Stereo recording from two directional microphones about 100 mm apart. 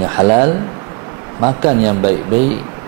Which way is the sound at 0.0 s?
20° right (ahead or behind).